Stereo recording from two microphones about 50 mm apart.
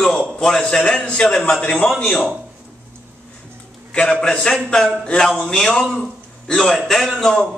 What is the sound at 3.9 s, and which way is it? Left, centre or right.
A man's voice, left.